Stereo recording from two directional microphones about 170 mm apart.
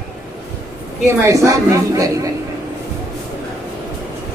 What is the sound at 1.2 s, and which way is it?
A woman's voice, 20° right (ahead or behind).